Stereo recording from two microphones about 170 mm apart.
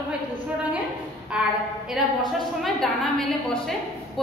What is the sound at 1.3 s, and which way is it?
A woman's voice, 5° right (ahead or behind).